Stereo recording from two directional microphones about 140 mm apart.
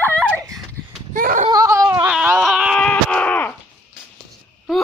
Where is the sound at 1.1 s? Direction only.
80° right.